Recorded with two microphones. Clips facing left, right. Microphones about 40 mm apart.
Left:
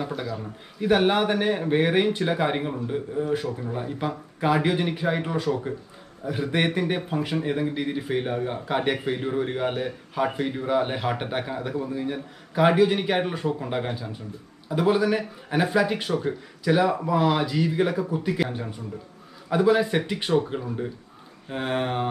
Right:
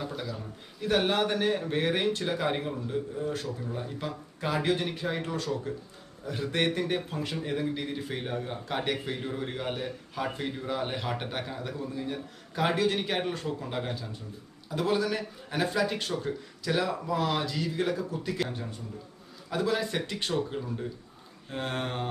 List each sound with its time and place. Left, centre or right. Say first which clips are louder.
0.0 s a man's voice: left 6 dB; centre